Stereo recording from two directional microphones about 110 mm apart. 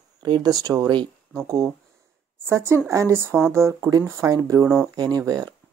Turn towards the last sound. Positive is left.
turn(degrees=-35)  # may be behind; listen again after turning